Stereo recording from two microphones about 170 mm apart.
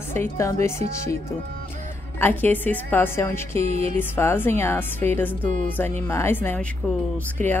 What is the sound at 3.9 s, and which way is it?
A woman's voice, 10° left (ahead or behind).